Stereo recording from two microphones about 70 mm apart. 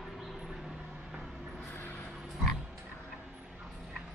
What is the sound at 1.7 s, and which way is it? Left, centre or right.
Vehicle, left.